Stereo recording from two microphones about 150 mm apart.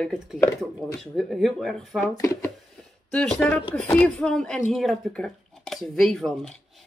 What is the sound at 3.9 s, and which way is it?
Speech, 5° left (ahead or behind).